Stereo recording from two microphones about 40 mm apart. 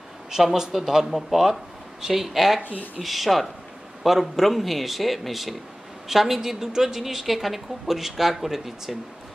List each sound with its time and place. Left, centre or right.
0.3 s a woman's voice: centre
2.6 s speech: left
3.0 s a woman's voice: centre